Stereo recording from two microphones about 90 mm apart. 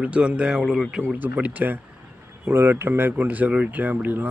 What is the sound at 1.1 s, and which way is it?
A man's voice, 20° right (ahead or behind).